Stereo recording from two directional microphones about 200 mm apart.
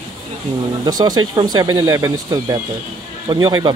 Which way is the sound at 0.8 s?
20° right (ahead or behind).